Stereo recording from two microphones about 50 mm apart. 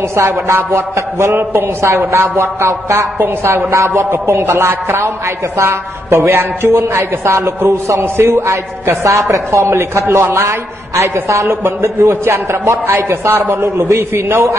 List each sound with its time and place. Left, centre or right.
0.1 s a man's voice: right
0.7 s a man's voice: right
1.3 s a man's voice: right
1.9 s a man's voice: right
3.2 s a man's voice: right
3.7 s a man's voice: right
4.1 s a man's voice: right
8.0 s a man's voice: right
9.0 s a man's voice: right
13.7 s a man's voice: right
14.1 s a man's voice: right